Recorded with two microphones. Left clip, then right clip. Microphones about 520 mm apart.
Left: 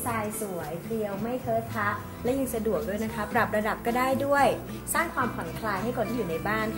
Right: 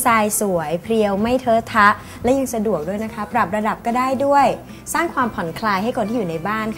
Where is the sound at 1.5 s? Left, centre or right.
Right.